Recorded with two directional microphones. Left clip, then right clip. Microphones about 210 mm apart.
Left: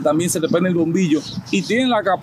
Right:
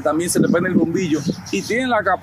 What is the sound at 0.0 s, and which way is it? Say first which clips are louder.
Speech: even; 15° left (ahead or behind).